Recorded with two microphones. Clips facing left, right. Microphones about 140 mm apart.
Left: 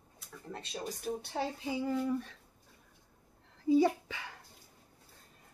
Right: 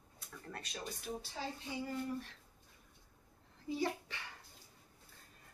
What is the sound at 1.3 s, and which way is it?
Child singing, 75° left (ahead or behind).